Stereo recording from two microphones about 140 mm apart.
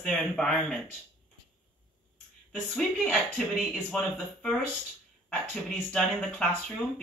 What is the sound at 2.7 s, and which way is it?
Speech, 5° left (ahead or behind).